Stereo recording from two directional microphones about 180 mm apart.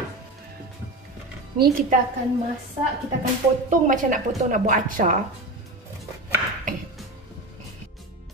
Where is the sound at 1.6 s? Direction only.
55° right (ahead or behind).